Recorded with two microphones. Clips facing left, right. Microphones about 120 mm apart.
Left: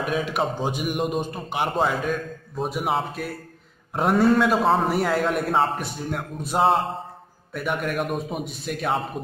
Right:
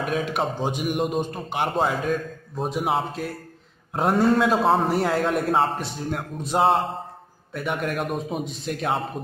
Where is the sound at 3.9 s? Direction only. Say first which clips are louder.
Left 1 dB; 25° right (ahead or behind).